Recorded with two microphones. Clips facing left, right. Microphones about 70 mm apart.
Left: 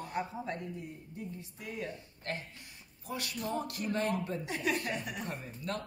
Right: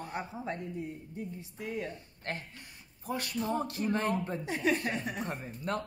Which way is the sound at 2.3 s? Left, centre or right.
Right.